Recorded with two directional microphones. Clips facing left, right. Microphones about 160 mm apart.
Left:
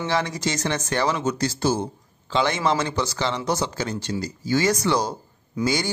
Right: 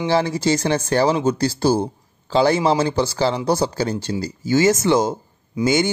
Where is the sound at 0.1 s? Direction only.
30° right (ahead or behind).